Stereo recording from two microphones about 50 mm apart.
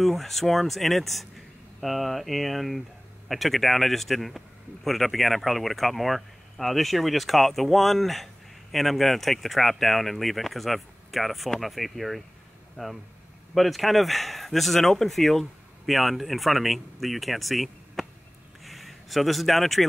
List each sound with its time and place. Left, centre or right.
0.0 s speech: centre
12.8 s speech: centre
13.6 s speech: centre
18.6 s a sound: centre